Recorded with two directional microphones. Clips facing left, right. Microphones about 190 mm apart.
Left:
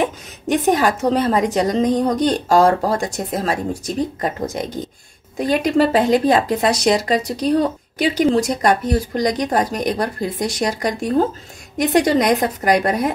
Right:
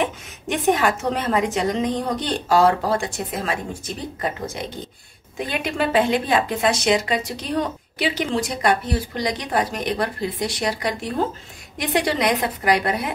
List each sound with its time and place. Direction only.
0.0 s a woman's voice: 40° left (ahead or behind)